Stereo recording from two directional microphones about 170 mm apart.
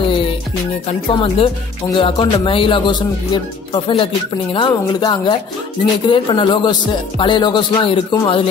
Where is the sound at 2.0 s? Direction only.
30° left (ahead or behind).